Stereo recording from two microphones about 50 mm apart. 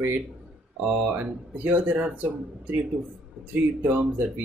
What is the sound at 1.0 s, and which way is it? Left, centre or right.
Speech, right.